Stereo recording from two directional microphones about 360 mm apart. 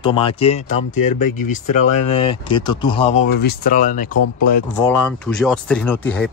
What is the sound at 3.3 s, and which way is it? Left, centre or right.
Speech, left.